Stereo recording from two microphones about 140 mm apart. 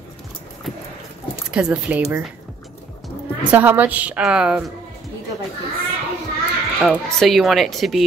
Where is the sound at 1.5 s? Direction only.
5° right (ahead or behind).